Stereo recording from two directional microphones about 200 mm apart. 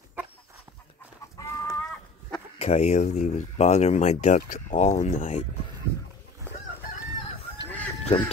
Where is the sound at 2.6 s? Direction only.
35° left (ahead or behind).